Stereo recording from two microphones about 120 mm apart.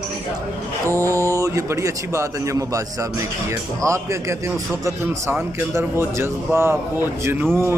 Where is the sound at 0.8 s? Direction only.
25° right (ahead or behind).